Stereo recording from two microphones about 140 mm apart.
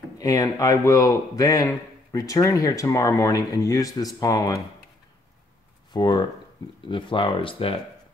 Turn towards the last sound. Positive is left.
turn(degrees=40)  # may be behind; listen again after turning